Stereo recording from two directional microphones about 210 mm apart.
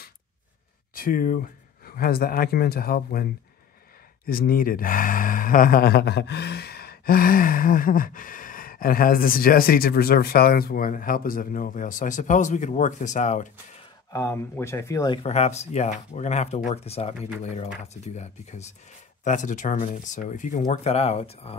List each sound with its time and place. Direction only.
0.9 s speech: 40° left (ahead or behind)
4.3 s speech: 45° left (ahead or behind)
14.1 s speech: 15° left (ahead or behind)
15.2 s speech: 30° left (ahead or behind)